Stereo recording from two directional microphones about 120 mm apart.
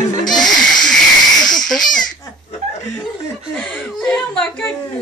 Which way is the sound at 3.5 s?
5° left (ahead or behind).